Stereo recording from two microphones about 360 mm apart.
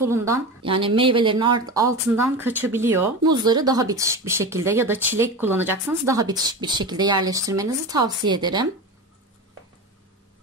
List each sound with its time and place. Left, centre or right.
0.0 s speech: centre